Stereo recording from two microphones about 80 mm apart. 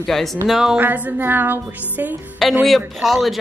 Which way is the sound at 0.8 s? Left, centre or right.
Right.